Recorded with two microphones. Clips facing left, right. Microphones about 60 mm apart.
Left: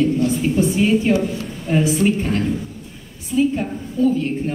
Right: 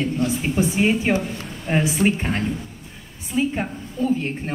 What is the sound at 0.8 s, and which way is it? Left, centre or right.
A woman's voice, right.